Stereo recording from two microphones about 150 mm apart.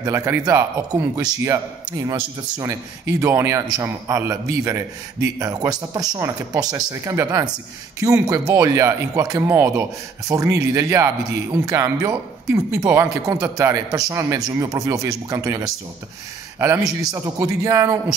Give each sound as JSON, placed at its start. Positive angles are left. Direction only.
{"t": 0.0, "sound": "a man's voice", "side_deg": -20}